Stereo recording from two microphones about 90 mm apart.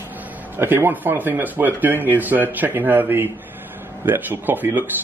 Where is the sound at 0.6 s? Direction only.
25° right (ahead or behind).